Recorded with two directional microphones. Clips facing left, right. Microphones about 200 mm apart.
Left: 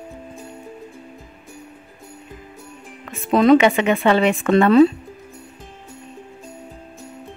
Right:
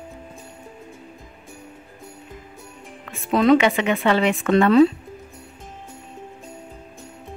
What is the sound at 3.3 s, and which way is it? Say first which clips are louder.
Speech: left 3 dB; 45° left (ahead or behind).